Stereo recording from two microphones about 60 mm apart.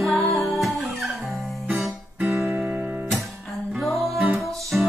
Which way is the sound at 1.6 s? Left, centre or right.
Centre.